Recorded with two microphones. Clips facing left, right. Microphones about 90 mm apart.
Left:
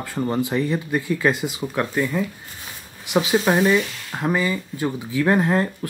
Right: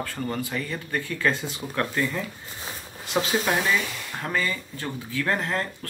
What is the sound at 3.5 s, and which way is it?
Speech, 25° left (ahead or behind).